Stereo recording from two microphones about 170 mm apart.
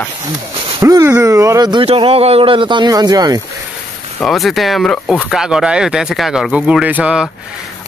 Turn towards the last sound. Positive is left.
turn(degrees=-5)  # may be behind; listen again after turning